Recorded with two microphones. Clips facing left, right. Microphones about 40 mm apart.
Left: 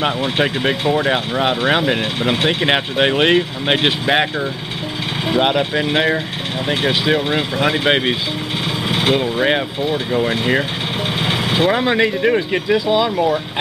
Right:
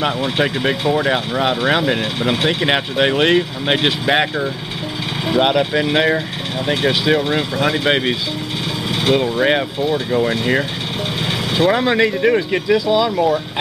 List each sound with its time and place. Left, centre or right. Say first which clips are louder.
0.0 s speech: even; centre
9.8 s speech: right 1 dB; centre
13.1 s speech: right 1 dB; centre